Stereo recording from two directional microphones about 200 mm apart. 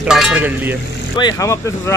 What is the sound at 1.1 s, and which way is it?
Speech, 20° left (ahead or behind).